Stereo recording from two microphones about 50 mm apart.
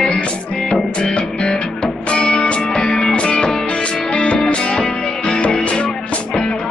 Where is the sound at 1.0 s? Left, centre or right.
Centre.